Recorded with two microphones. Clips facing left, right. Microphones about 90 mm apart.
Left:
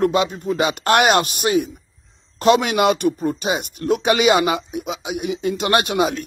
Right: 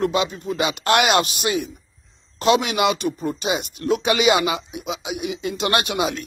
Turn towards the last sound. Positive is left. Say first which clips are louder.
# left 3 dB
turn(degrees=45)  # may be behind; listen again after turning